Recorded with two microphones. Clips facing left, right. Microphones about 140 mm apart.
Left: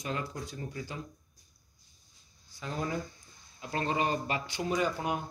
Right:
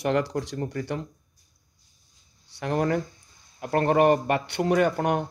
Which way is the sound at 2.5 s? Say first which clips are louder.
Right 10 dB; 70° right (ahead or behind).